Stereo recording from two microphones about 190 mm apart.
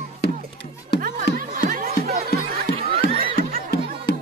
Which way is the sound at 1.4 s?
45° right (ahead or behind).